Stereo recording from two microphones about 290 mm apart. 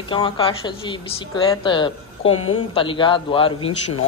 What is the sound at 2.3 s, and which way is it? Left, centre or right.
Speech, left.